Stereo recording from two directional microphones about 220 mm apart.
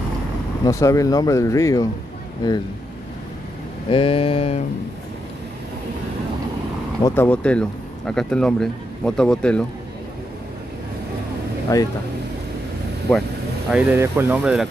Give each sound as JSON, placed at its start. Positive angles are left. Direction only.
{"t": 0.7, "sound": "speech", "side_deg": 15}
{"t": 3.9, "sound": "a sound", "side_deg": 25}
{"t": 7.1, "sound": "speech", "side_deg": 10}
{"t": 11.7, "sound": "speech", "side_deg": 15}
{"t": 13.7, "sound": "speech", "side_deg": -5}